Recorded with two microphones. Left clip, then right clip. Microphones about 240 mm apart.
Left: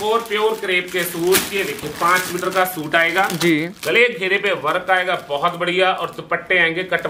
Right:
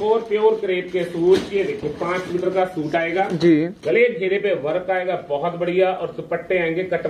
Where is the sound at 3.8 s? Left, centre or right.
Left.